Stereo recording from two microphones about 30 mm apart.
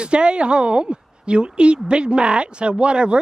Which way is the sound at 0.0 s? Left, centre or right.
Right.